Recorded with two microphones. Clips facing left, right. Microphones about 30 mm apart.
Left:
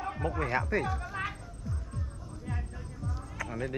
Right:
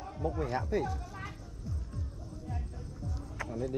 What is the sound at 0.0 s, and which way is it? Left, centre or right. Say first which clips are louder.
Speech: left 3 dB; left.